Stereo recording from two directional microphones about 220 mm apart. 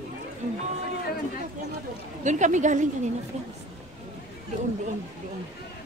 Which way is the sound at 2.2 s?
35° right (ahead or behind).